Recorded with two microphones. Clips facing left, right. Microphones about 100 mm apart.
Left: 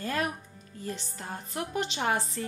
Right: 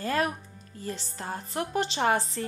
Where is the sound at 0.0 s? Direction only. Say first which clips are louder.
Right 3 dB; 40° right (ahead or behind).